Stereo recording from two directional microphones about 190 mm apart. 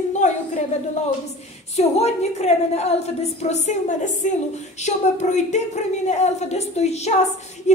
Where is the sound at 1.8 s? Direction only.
35° left (ahead or behind).